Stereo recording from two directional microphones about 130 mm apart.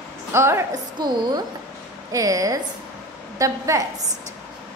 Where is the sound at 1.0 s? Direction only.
30° right (ahead or behind).